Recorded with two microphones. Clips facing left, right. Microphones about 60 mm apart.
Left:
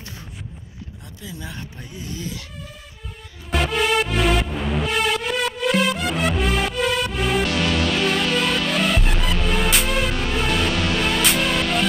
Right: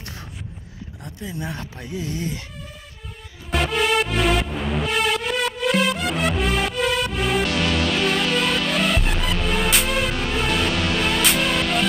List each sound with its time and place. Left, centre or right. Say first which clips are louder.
1.0 s speech: right 6 dB; right
1.6 s speech: right 5 dB; right
3.4 s music: even; centre